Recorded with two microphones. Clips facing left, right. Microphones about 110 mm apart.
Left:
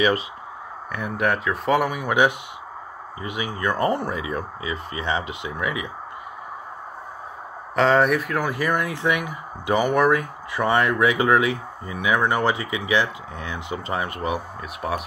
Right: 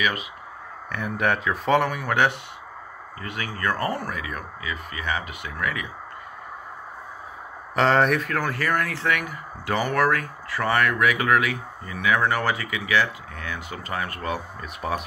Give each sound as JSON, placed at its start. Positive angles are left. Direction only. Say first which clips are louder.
{"t": 0.9, "sound": "speech", "louder": "left 1 dB", "side_deg": 0}
{"t": 7.7, "sound": "speech", "louder": "left 2 dB", "side_deg": 0}
{"t": 14.6, "sound": "speech", "louder": "left 1 dB", "side_deg": 0}